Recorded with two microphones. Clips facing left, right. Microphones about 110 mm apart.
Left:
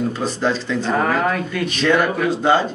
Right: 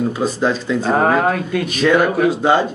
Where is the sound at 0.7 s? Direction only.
40° right (ahead or behind).